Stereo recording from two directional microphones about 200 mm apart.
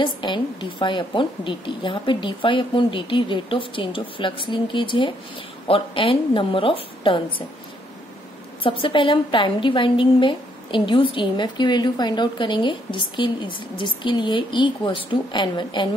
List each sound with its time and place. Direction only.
0.0 s a woman's voice: 25° left (ahead or behind)
8.6 s a woman's voice: 25° left (ahead or behind)